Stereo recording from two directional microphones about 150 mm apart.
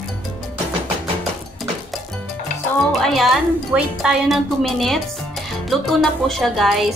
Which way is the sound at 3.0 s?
Centre (ahead or behind).